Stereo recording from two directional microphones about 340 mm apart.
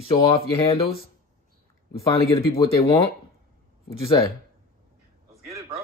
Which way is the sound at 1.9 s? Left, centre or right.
Centre.